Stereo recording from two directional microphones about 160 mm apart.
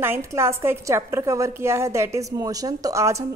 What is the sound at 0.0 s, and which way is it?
A woman's voice, 15° right (ahead or behind).